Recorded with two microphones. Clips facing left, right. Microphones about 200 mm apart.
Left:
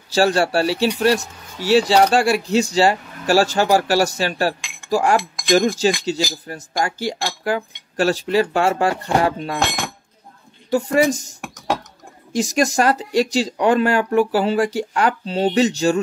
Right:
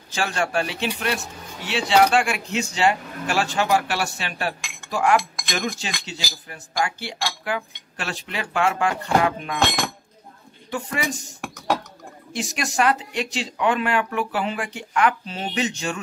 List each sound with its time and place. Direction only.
0.1 s speech: 35° left (ahead or behind)
10.7 s speech: 40° left (ahead or behind)
12.3 s speech: 40° left (ahead or behind)